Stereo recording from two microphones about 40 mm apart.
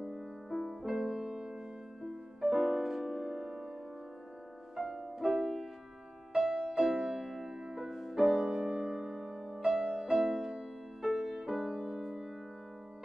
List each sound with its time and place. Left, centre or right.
0.5 s music: centre
0.8 s music: centre
2.0 s music: centre
5.2 s music: centre
7.2 s music: centre
9.6 s music: centre
10.6 s music: centre